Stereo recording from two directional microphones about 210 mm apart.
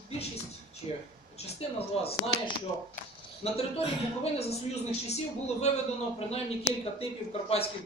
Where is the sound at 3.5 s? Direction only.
30° left (ahead or behind).